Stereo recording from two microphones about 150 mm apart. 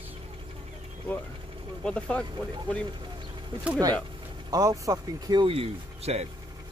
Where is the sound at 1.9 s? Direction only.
5° left (ahead or behind).